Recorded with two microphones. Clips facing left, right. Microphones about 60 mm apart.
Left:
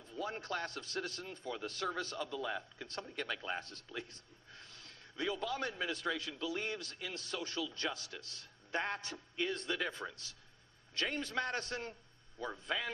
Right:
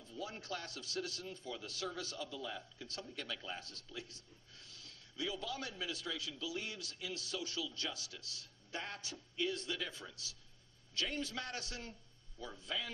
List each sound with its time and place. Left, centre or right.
0.0 s a man's voice: left